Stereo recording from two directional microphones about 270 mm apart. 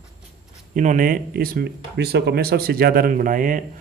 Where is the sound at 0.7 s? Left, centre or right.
Right.